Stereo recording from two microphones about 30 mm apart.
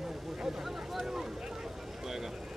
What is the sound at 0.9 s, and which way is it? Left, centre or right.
Speech, centre.